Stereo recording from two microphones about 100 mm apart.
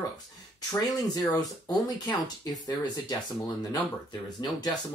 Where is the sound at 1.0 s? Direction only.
40° left (ahead or behind).